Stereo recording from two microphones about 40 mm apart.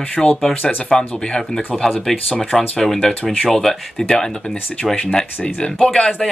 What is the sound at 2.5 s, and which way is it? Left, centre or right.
Speech, centre.